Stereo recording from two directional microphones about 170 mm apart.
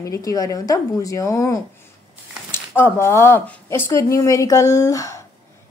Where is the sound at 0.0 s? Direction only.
20° left (ahead or behind).